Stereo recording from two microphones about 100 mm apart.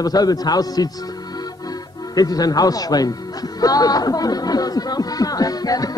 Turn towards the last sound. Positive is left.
turn(degrees=40)  # may be behind; listen again after turning